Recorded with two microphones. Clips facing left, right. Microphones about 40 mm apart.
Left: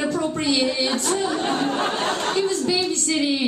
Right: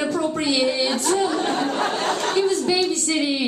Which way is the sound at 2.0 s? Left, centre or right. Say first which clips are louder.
Right 1 dB; left.